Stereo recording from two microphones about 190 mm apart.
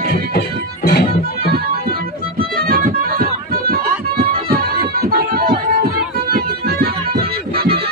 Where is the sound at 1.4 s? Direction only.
55° right (ahead or behind).